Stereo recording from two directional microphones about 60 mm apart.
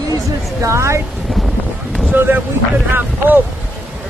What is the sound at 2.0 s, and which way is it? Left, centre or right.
Speech, right.